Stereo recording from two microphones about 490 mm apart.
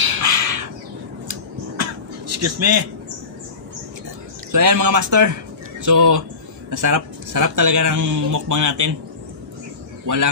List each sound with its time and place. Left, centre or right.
0.0 s bird: right
1.3 s a sound: right
4.5 s speech: right
10.1 s speech: right